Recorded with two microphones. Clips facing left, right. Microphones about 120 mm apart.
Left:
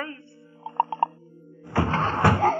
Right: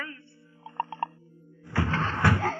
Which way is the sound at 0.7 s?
35° left (ahead or behind).